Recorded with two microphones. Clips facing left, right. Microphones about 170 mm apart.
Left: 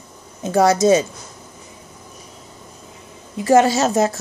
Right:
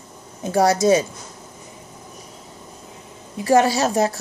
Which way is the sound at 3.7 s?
20° left (ahead or behind).